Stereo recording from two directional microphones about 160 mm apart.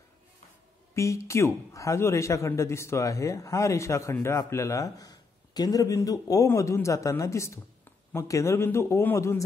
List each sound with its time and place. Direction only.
0.9 s a man's voice: 20° left (ahead or behind)